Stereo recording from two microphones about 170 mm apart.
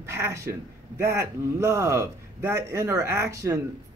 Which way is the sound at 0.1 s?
15° right (ahead or behind).